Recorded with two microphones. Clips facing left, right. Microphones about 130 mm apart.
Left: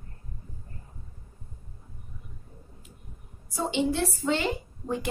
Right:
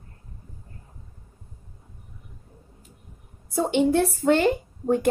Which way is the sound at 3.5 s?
55° right (ahead or behind).